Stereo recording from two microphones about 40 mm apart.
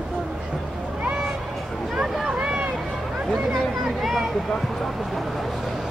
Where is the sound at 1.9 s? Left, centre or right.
Centre.